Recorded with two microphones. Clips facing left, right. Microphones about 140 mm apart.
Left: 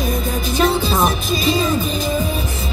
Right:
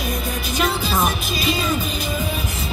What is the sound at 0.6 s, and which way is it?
Music, 40° left (ahead or behind).